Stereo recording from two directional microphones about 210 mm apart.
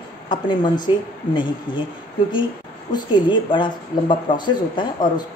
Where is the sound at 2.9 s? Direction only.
20° left (ahead or behind).